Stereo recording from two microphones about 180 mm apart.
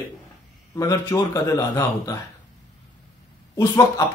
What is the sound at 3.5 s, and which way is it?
Speech, 20° left (ahead or behind).